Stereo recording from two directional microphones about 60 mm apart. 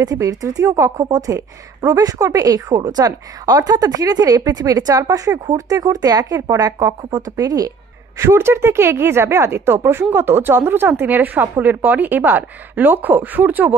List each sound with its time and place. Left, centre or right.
0.0 s speech: right
0.7 s a woman's voice: right
1.1 s speech: right
8.2 s speech: right